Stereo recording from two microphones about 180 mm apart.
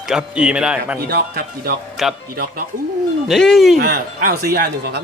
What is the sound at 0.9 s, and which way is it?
Speech, 60° right (ahead or behind).